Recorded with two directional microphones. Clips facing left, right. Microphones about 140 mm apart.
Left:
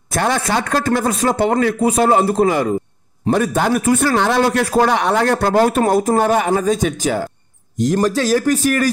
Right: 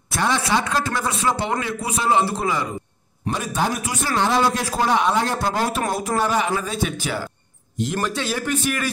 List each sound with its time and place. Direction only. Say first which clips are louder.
0.1 s a man's voice: left 3 dB; 50° left (ahead or behind)